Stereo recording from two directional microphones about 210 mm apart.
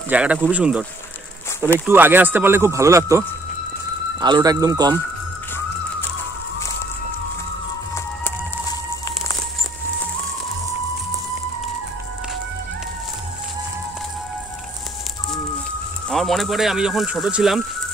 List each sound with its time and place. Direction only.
0.1 s speech: 5° right (ahead or behind)
1.9 s speech: 10° right (ahead or behind)
16.1 s speech: centre (ahead or behind)